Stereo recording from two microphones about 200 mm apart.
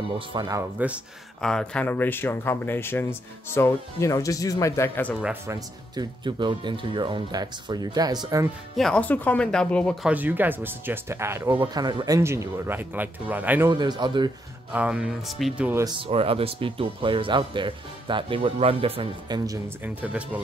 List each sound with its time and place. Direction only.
0.3 s speech: 20° right (ahead or behind); by 5.1 s 10° left (ahead or behind)
5.2 s speech: 10° right (ahead or behind)
8.7 s speech: 5° left (ahead or behind)
10.0 s speech: 10° right (ahead or behind)
13.7 s speech: 20° right (ahead or behind)
14.7 s speech: 5° right (ahead or behind)
15.8 s speech: 25° right (ahead or behind); by 20.2 s 5° right (ahead or behind)